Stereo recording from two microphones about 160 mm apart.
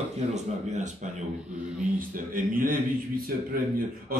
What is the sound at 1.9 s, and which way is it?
Speech, 60° right (ahead or behind).